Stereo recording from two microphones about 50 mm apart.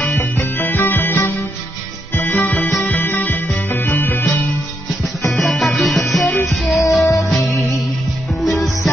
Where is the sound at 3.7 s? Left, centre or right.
Left.